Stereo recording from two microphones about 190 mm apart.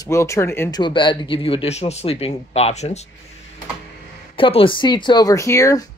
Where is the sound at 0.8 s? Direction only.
25° left (ahead or behind).